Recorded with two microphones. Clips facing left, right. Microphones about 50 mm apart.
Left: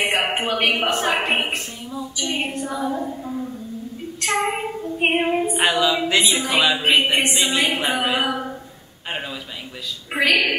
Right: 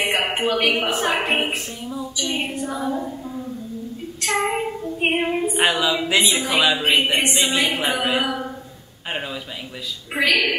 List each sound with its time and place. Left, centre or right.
0.0 s a sound: centre
0.6 s child singing: centre
0.8 s a woman's voice: centre
2.7 s a sound: centre
4.4 s child singing: centre
4.9 s a woman's voice: centre
10.1 s child singing: centre